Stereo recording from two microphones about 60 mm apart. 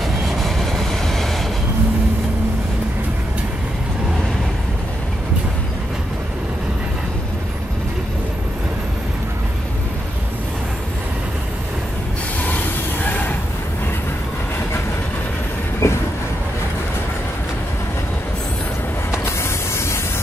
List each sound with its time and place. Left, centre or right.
0.0 s vehicle: centre
12.4 s a sound: left
15.8 s train: left